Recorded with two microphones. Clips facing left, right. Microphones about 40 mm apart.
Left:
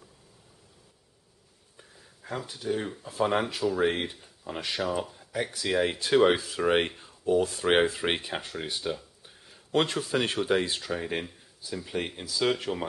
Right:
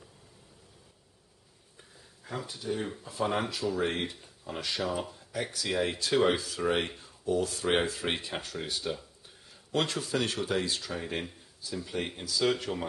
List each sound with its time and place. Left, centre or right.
1.8 s a sound: centre
3.0 s speech: centre
4.8 s speech: centre
10.1 s speech: left